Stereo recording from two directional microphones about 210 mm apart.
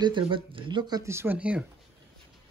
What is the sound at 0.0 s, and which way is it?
Speech, 25° right (ahead or behind).